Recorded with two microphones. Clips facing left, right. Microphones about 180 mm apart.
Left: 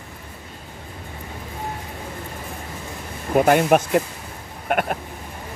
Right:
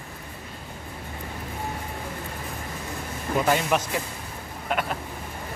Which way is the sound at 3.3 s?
55° left (ahead or behind).